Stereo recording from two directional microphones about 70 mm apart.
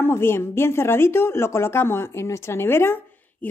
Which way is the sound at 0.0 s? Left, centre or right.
Left.